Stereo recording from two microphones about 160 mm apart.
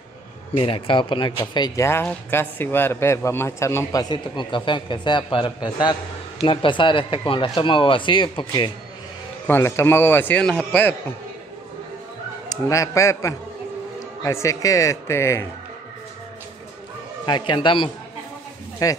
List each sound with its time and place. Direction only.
0.6 s a man's voice: 35° left (ahead or behind)
2.0 s a man's voice: 15° left (ahead or behind); by 8.7 s 30° left (ahead or behind)
9.5 s a man's voice: 15° left (ahead or behind)
12.4 s a man's voice: 20° left (ahead or behind)
17.3 s speech: 30° left (ahead or behind)
18.8 s a man's voice: 20° left (ahead or behind)